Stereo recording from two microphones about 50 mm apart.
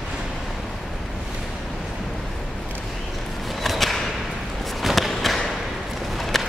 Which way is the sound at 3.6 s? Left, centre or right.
Centre.